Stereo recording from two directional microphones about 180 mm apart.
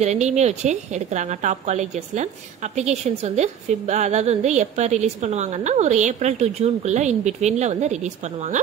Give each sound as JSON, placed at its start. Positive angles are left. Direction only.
{"t": 0.0, "sound": "a woman's voice", "side_deg": -40}